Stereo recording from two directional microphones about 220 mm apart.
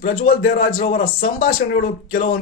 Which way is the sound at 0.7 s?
40° left (ahead or behind).